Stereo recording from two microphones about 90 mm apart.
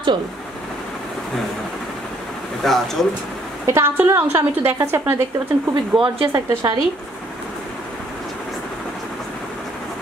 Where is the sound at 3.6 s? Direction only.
30° right (ahead or behind).